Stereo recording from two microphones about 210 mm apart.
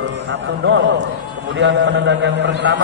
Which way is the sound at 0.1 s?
55° right (ahead or behind).